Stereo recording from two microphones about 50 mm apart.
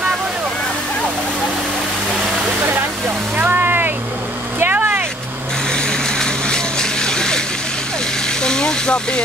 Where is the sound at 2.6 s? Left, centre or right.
Right.